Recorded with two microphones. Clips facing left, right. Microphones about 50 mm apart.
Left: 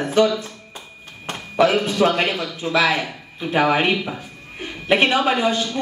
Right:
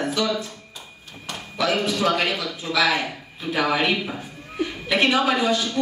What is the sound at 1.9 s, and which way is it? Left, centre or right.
A man's voice, left.